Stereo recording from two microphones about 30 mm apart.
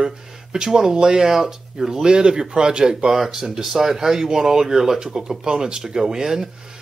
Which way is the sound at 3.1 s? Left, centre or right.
Centre.